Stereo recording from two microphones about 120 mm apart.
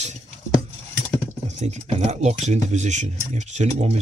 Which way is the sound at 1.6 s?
70° right (ahead or behind).